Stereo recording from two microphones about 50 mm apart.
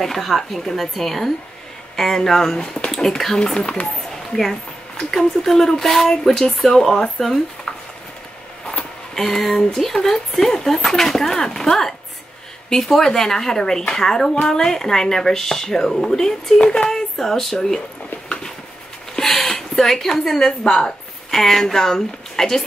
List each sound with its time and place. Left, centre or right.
0.0 s a woman's voice: centre
3.5 s speech: centre
4.4 s a woman's voice: centre
8.6 s a sound: centre
9.8 s a woman's voice: centre
19.1 s speech: centre